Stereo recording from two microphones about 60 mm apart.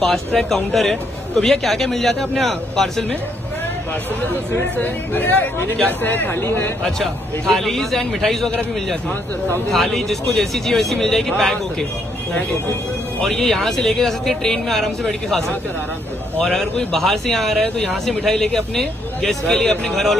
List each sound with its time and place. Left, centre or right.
0.0 s a man's voice: centre
4.7 s speech: left
6.8 s a man's voice: centre
9.7 s a man's voice: centre
13.2 s a man's voice: centre
16.9 s a man's voice: centre